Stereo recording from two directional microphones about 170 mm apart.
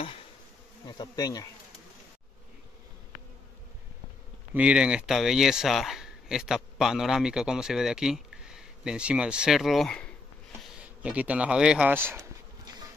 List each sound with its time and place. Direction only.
0.8 s bee: 25° left (ahead or behind)
4.6 s speech: 5° right (ahead or behind)
10.6 s a sound: 5° right (ahead or behind)